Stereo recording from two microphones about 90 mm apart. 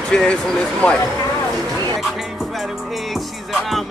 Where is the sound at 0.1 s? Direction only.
10° left (ahead or behind).